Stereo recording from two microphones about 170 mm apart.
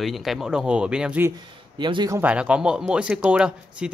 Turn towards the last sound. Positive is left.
turn(degrees=-5)  # may be behind; listen again after turning